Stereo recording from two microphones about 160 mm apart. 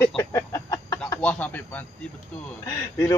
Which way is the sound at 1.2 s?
10° left (ahead or behind).